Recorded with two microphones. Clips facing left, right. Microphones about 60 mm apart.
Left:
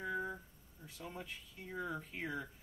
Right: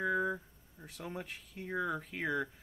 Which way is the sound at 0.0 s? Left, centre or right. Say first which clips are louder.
Right 7 dB; right.